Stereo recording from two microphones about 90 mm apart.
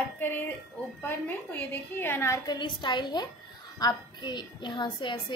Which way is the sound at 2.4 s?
55° left (ahead or behind).